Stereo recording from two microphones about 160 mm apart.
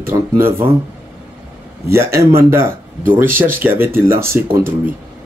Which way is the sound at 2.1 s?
15° right (ahead or behind).